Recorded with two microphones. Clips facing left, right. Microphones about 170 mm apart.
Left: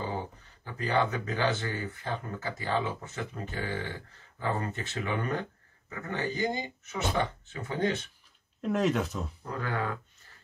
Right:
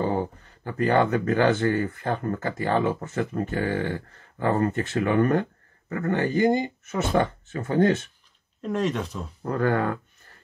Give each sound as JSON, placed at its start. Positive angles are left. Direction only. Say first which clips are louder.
{"t": 0.7, "sound": "speech", "louder": "right 7 dB", "side_deg": -55}
{"t": 8.5, "sound": "speech", "louder": "right 1 dB", "side_deg": 0}
{"t": 9.4, "sound": "speech", "louder": "right 11 dB", "side_deg": -60}